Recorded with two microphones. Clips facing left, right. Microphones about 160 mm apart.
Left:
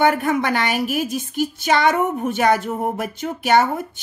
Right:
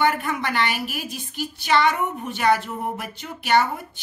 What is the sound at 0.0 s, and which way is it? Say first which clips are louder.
A woman's voice: left 5 dB; 45° left (ahead or behind).